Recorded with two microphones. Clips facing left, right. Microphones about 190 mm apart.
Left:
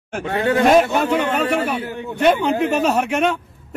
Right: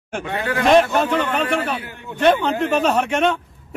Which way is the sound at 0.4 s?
25° left (ahead or behind).